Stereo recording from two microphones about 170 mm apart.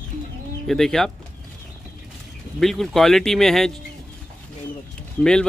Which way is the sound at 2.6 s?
Centre (ahead or behind).